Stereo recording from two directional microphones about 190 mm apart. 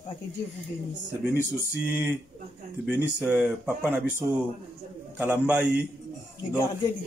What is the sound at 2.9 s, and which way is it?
A man's voice, 10° right (ahead or behind).